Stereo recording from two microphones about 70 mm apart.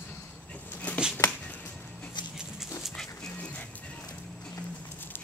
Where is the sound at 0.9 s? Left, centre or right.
Left.